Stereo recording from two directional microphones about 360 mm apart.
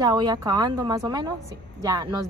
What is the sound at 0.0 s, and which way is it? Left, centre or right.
A woman's voice, centre.